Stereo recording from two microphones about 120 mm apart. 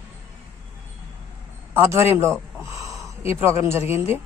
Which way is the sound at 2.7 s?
25° right (ahead or behind).